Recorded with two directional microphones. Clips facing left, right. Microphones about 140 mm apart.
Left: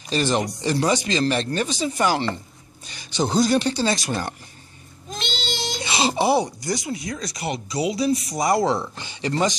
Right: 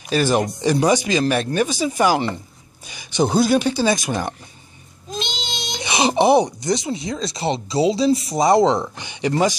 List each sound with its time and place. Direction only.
0.1 s speech: 10° right (ahead or behind)